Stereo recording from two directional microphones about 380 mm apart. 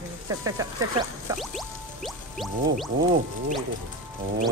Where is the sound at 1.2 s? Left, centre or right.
Centre.